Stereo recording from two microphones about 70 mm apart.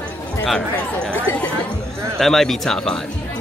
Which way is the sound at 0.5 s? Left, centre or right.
Centre.